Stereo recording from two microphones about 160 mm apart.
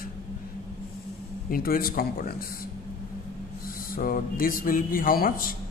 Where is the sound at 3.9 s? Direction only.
60° left (ahead or behind).